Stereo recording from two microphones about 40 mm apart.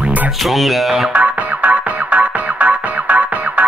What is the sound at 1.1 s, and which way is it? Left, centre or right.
Music, right.